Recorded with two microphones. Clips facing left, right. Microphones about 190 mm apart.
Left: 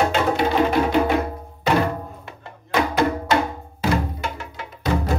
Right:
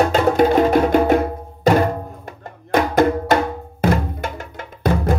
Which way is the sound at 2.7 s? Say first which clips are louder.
Right 5 dB; 50° right (ahead or behind).